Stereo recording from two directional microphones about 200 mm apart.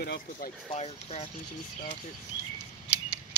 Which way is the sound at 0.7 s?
30° left (ahead or behind).